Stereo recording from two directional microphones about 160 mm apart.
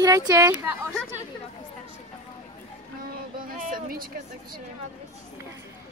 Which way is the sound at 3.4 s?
55° right (ahead or behind).